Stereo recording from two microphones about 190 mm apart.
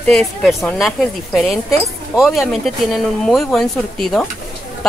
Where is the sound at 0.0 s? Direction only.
5° left (ahead or behind).